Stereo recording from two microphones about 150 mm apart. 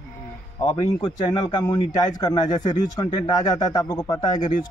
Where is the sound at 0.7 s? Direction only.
25° left (ahead or behind).